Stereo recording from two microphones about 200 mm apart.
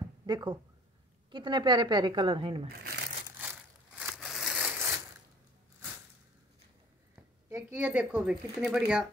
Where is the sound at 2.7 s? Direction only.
55° right (ahead or behind).